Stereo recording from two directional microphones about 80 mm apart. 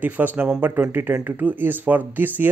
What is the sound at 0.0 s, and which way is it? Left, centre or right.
Speech, right.